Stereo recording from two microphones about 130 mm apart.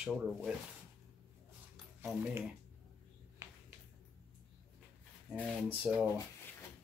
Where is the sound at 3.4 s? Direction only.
20° right (ahead or behind).